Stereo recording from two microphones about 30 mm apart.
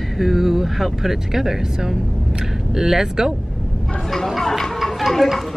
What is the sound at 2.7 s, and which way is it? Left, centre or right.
Speech, centre.